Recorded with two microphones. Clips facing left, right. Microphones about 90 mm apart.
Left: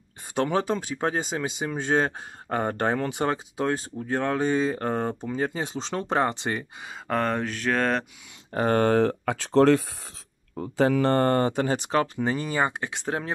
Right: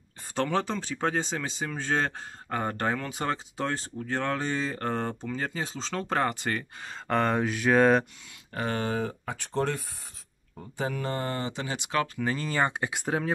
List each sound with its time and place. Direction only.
0.3 s speech: 15° left (ahead or behind)
2.5 s speech: 25° left (ahead or behind)
3.5 s speech: 10° left (ahead or behind)
6.9 s speech: centre (ahead or behind)
8.5 s speech: 50° left (ahead or behind); by 12.3 s 30° left (ahead or behind)
12.3 s speech: 15° left (ahead or behind)
12.8 s speech: 5° right (ahead or behind)